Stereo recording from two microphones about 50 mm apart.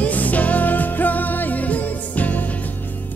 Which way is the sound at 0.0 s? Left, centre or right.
Left.